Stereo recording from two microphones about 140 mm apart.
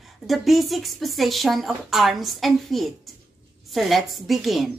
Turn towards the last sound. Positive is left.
turn(degrees=0)  # may be behind; listen again after turning